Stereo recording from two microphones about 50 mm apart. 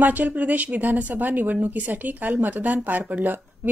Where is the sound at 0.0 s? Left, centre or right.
Right.